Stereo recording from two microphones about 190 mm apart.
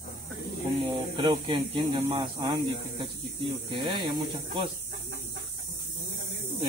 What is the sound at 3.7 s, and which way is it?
Speech, 25° right (ahead or behind).